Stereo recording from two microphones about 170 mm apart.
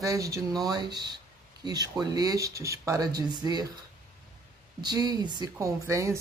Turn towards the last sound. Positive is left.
turn(degrees=-15)  # may be behind; listen again after turning